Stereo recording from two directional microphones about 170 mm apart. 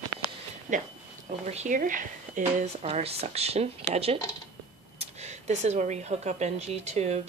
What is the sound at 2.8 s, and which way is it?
Speech, 35° right (ahead or behind).